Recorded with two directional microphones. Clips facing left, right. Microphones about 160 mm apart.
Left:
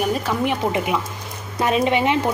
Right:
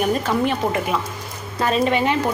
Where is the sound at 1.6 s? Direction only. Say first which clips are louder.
Even; 20° left (ahead or behind).